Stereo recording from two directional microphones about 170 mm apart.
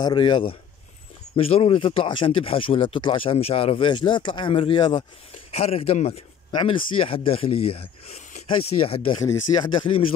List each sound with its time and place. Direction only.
0.0 s speech: 25° left (ahead or behind)
5.5 s speech: 35° left (ahead or behind)